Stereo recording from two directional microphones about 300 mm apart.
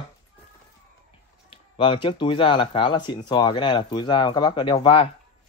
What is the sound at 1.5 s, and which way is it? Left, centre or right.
Speech, centre.